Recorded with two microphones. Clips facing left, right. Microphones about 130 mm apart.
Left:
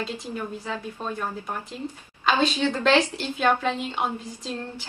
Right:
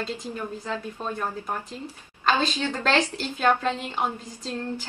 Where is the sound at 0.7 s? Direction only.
10° left (ahead or behind).